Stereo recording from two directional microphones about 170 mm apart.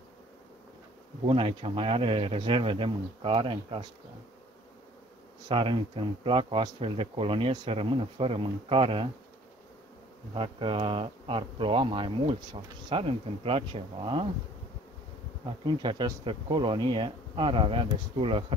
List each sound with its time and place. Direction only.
1.2 s speech: 30° right (ahead or behind)
5.5 s speech: 30° right (ahead or behind)
10.3 s speech: 30° right (ahead or behind)
15.6 s speech: 25° right (ahead or behind)